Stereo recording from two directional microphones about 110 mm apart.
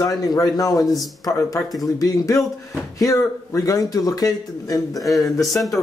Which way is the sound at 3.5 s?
30° left (ahead or behind).